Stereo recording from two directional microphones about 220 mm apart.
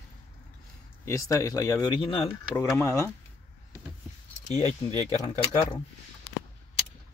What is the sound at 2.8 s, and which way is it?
Speech, 10° left (ahead or behind).